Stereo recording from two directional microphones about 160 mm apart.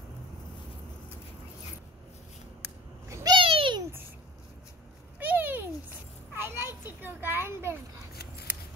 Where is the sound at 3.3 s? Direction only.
30° right (ahead or behind).